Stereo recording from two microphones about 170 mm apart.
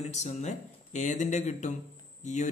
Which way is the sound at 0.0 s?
40° left (ahead or behind).